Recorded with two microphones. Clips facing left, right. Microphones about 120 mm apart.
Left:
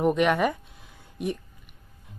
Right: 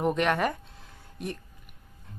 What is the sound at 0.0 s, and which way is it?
Speech, 5° left (ahead or behind).